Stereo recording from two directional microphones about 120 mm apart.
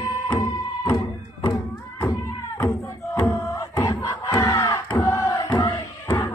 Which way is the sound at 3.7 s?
30° left (ahead or behind).